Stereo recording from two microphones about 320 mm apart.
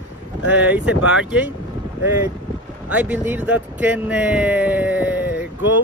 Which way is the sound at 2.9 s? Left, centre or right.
Centre.